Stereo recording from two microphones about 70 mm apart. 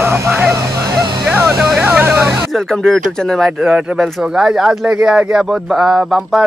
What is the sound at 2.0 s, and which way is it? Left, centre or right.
Vehicle, right.